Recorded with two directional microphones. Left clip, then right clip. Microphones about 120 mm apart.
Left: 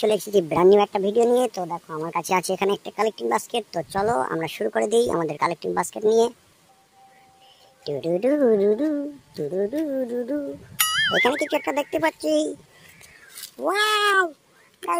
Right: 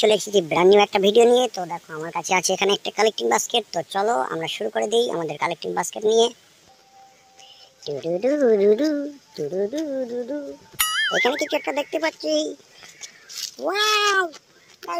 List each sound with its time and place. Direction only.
0.0 s speech: 10° left (ahead or behind)
0.8 s speech: 5° right (ahead or behind)
1.7 s speech: 20° left (ahead or behind)
2.4 s speech: 10° left (ahead or behind)
7.8 s speech: 10° left (ahead or behind); by 9.1 s 15° right (ahead or behind)
9.4 s speech: centre (ahead or behind); by 10.4 s 15° left (ahead or behind)
10.8 s speech: centre (ahead or behind); by 12.5 s 15° left (ahead or behind)
13.7 s speech: centre (ahead or behind)